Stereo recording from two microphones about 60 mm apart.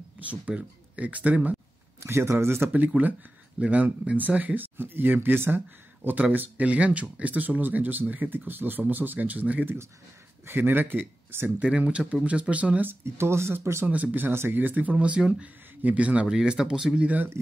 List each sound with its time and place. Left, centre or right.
0.2 s speech: right
2.0 s speech: right
2.7 s speech: right
6.3 s speech: right
10.4 s speech: right
11.6 s speech: centre
12.8 s speech: right
13.8 s speech: right